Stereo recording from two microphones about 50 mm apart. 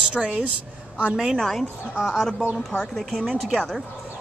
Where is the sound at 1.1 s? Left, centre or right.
Centre.